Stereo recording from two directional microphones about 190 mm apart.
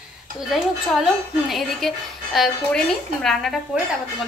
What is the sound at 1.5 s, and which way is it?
Speech, centre (ahead or behind).